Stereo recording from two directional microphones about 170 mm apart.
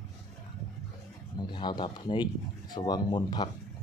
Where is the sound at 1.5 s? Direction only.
25° left (ahead or behind).